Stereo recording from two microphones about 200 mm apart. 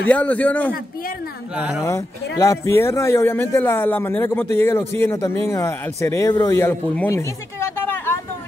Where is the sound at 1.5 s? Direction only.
5° right (ahead or behind).